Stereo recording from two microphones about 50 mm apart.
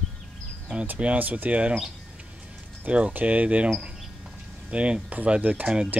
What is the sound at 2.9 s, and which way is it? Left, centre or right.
Speech, right.